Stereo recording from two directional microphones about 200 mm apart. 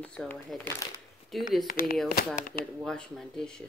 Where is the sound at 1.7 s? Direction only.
45° left (ahead or behind).